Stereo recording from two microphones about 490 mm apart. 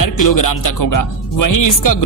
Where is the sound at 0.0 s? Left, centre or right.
Left.